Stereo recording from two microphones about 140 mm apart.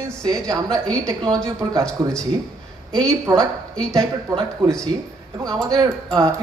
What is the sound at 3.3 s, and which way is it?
Speech, 15° right (ahead or behind).